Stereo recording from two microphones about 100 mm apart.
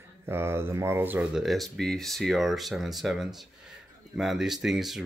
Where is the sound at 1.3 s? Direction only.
Centre (ahead or behind).